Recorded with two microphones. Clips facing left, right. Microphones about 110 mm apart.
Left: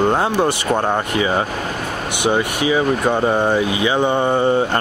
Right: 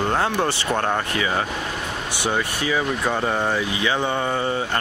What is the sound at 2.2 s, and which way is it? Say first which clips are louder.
Speech: left 6 dB; 15° left (ahead or behind).